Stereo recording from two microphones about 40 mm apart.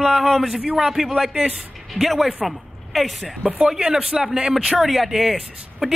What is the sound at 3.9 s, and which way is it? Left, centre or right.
Speech, centre.